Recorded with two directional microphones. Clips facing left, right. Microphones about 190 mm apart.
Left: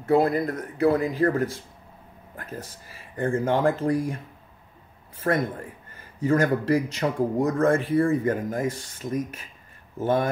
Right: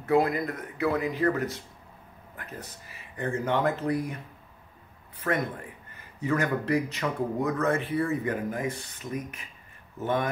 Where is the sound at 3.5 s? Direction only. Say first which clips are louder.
Left 3 dB; 30° left (ahead or behind).